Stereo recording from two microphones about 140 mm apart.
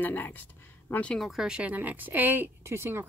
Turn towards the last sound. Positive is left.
turn(degrees=-15)  # may be behind; listen again after turning